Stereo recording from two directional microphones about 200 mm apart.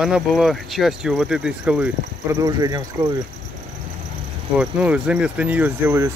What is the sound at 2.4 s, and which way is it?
Speech, 20° right (ahead or behind).